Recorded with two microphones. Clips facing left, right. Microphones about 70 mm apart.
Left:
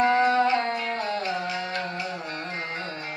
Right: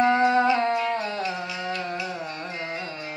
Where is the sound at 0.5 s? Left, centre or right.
Left.